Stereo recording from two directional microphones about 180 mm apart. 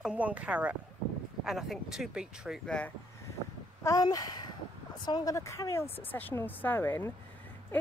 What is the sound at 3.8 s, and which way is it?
Speech, 20° left (ahead or behind).